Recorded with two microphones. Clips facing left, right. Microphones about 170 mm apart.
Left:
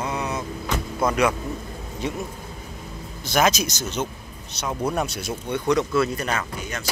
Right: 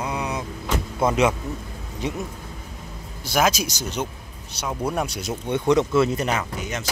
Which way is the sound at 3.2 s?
10° right (ahead or behind).